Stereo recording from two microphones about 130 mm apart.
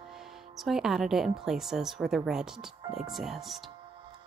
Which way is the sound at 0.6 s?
5° right (ahead or behind).